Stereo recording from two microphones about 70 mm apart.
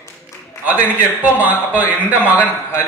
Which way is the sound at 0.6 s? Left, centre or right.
Right.